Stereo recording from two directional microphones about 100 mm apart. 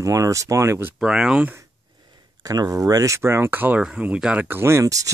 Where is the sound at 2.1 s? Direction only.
40° right (ahead or behind); by 4.6 s 15° right (ahead or behind).